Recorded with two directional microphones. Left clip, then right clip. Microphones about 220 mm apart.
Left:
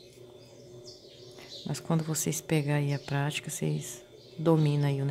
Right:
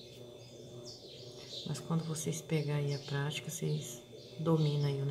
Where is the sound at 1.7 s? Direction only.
45° left (ahead or behind).